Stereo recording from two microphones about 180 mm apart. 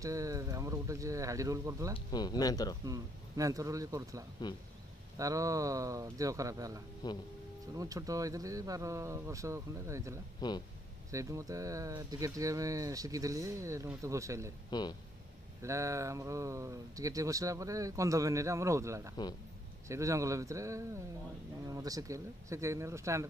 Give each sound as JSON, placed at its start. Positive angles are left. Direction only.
{"t": 0.0, "sound": "speech", "side_deg": -20}
{"t": 2.0, "sound": "speech", "side_deg": 20}
{"t": 2.8, "sound": "speech", "side_deg": -20}
{"t": 4.4, "sound": "speech", "side_deg": 20}
{"t": 5.1, "sound": "speech", "side_deg": -20}
{"t": 7.0, "sound": "speech", "side_deg": 20}
{"t": 7.7, "sound": "speech", "side_deg": -20}
{"t": 10.4, "sound": "speech", "side_deg": 20}
{"t": 11.1, "sound": "speech", "side_deg": -15}
{"t": 14.7, "sound": "speech", "side_deg": 25}
{"t": 15.6, "sound": "speech", "side_deg": -15}